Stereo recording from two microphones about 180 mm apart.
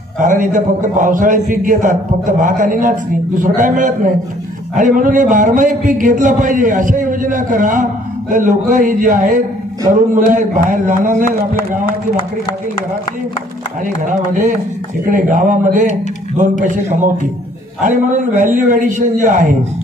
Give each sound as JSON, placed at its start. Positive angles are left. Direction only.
{"t": 0.2, "sound": "a man's voice", "side_deg": -45}
{"t": 13.8, "sound": "a man's voice", "side_deg": -45}
{"t": 18.7, "sound": "a man's voice", "side_deg": -45}